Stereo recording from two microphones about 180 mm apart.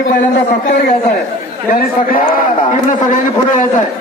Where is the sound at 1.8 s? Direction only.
50° left (ahead or behind).